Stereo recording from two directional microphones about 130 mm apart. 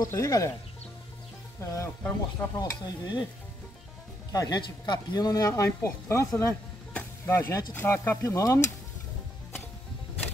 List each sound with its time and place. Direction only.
0.0 s speech: 25° left (ahead or behind)
1.6 s speech: 20° left (ahead or behind)
4.3 s speech: 30° left (ahead or behind)
6.9 s stir: 10° left (ahead or behind)
7.7 s speech: 15° left (ahead or behind)